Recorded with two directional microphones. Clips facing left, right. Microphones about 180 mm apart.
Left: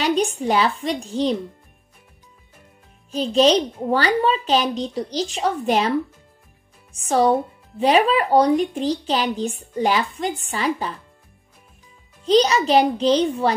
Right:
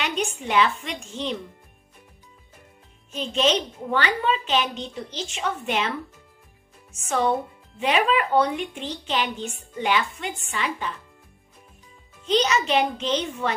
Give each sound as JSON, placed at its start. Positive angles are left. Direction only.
{"t": 0.0, "sound": "a woman's voice", "side_deg": 35}
{"t": 3.1, "sound": "a woman's voice", "side_deg": 35}
{"t": 12.3, "sound": "a woman's voice", "side_deg": 35}